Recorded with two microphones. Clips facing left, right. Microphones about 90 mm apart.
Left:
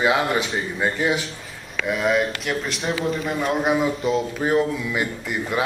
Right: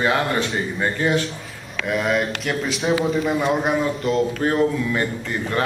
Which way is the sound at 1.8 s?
Centre (ahead or behind).